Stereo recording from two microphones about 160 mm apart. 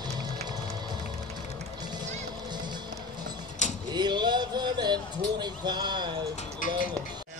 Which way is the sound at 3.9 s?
30° right (ahead or behind).